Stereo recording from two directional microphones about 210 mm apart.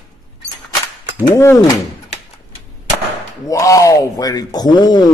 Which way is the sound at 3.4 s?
15° left (ahead or behind).